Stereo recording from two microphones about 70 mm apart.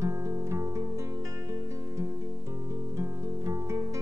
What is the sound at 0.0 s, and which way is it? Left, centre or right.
Music, right.